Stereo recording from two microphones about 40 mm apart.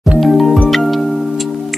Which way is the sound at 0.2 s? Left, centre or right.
Centre.